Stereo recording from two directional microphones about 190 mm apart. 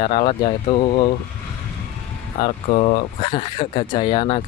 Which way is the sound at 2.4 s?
30° left (ahead or behind).